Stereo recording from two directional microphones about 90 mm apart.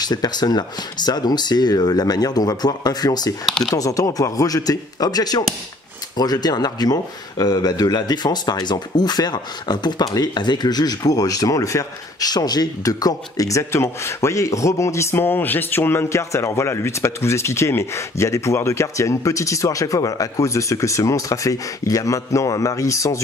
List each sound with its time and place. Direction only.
0.0 s speech: 50° left (ahead or behind)
3.4 s speech: centre (ahead or behind)
3.7 s speech: 40° left (ahead or behind)